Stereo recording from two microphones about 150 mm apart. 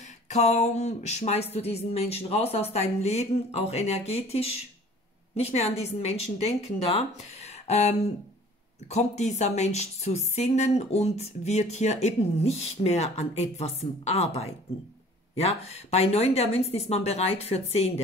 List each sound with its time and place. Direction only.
0.3 s speech: 50° left (ahead or behind)